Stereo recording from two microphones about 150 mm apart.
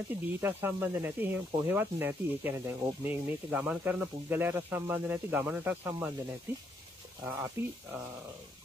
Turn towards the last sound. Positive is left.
turn(degrees=-15)  # may be behind; listen again after turning